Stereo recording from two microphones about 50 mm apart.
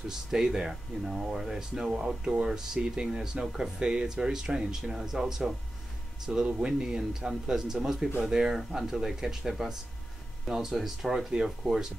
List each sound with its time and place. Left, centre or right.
0.3 s speech: centre